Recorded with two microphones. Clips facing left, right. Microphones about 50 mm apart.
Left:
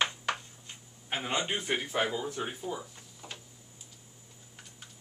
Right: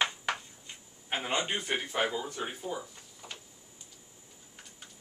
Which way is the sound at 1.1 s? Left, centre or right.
Centre.